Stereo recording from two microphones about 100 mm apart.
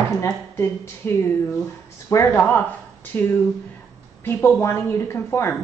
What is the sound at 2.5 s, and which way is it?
A woman's voice, 20° left (ahead or behind).